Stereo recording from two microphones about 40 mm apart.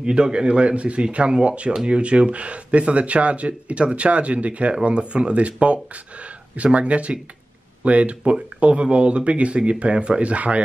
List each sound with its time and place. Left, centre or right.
0.0 s speech: right